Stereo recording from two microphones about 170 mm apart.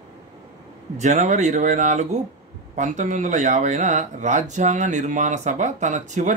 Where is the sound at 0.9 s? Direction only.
45° right (ahead or behind).